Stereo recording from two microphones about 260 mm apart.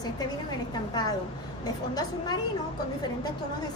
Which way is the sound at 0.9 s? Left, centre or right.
Centre.